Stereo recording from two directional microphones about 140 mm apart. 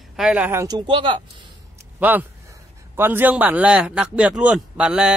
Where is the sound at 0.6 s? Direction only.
30° right (ahead or behind).